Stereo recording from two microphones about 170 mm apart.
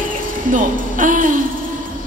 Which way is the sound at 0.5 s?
50° right (ahead or behind).